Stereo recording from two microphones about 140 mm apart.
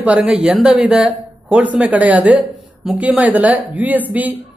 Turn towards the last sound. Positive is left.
turn(degrees=-10)  # may be behind; listen again after turning